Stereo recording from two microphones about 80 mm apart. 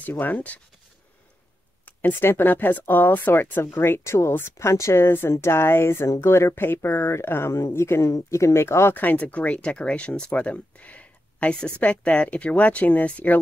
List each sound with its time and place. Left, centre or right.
0.0 s speech: left
1.9 s speech: left